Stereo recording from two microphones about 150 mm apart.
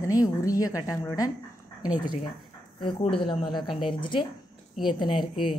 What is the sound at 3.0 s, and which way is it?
Speech, 35° left (ahead or behind).